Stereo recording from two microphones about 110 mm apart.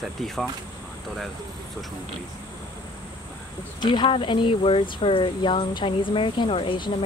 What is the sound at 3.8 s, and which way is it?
Speech, 45° left (ahead or behind).